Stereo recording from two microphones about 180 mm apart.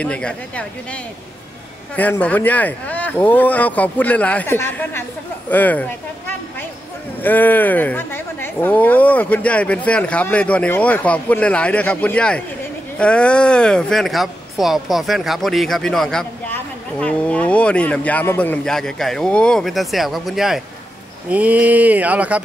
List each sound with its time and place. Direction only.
0.0 s a woman's voice: 5° left (ahead or behind)
2.0 s a woman's voice: 10° left (ahead or behind)
7.2 s a woman's voice: 10° left (ahead or behind)
21.3 s a sound: 10° right (ahead or behind)